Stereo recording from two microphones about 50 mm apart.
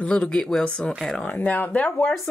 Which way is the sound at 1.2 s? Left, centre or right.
Left.